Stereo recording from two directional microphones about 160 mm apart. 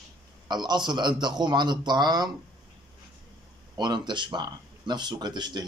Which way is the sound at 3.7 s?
25° right (ahead or behind).